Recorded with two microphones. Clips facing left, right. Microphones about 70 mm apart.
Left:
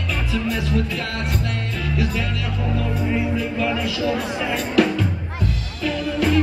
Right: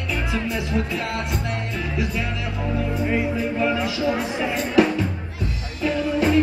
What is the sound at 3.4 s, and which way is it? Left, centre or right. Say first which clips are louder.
Speech: right 1 dB; right.